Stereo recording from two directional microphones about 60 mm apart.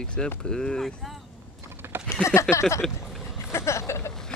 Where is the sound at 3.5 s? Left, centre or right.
Left.